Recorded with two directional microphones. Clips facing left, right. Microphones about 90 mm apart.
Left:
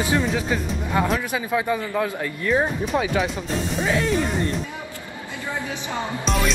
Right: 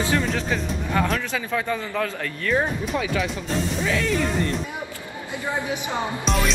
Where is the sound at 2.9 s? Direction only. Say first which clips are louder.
Left 4 dB; 40° left (ahead or behind).